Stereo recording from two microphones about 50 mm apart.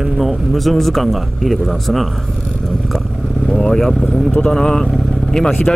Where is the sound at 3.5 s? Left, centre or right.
Centre.